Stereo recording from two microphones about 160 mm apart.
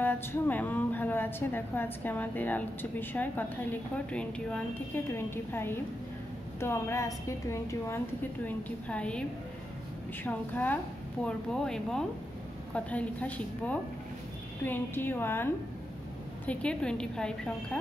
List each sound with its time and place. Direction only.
0.0 s a woman's voice: 10° left (ahead or behind)
10.2 s a woman's voice: 10° left (ahead or behind)